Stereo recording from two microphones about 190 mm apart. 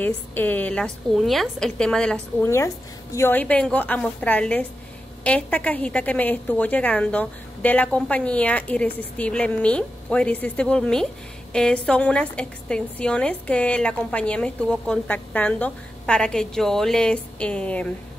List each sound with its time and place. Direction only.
0.0 s a woman's voice: 10° left (ahead or behind)